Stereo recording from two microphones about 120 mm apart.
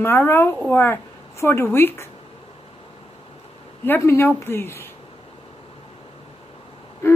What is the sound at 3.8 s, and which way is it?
Speech, 20° left (ahead or behind).